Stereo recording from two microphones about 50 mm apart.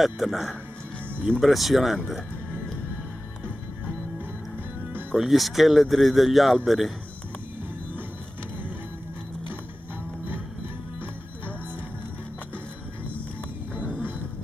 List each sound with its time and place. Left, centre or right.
0.0 s speech: centre
5.1 s speech: centre